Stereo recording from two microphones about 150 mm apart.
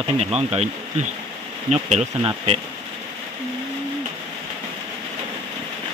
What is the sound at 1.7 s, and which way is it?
Speech, 45° right (ahead or behind).